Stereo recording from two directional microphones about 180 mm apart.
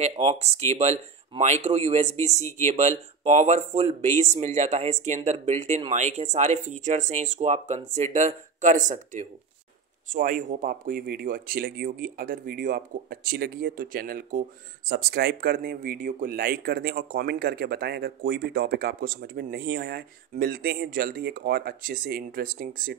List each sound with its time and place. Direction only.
0.0 s speech: 35° right (ahead or behind); by 22.9 s 50° right (ahead or behind)